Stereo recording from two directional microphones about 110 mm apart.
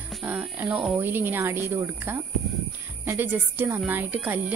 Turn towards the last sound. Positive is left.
turn(degrees=-15)  # may be behind; listen again after turning